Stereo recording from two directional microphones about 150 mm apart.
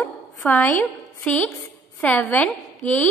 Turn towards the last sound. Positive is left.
turn(degrees=10)  # may be behind; listen again after turning